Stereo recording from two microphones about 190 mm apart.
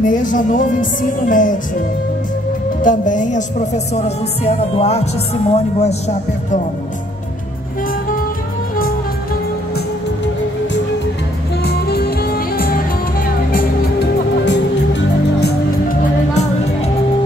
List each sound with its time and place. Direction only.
0.0 s speech: 45° left (ahead or behind)
2.8 s speech: 45° left (ahead or behind)
11.6 s music: 55° left (ahead or behind)
14.4 s music: 70° left (ahead or behind)
15.9 s music: 35° left (ahead or behind)